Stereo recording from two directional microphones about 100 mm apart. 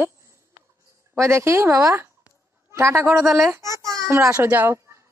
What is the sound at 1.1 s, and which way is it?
A woman's voice, 30° right (ahead or behind).